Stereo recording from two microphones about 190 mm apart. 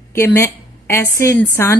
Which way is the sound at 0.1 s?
15° left (ahead or behind).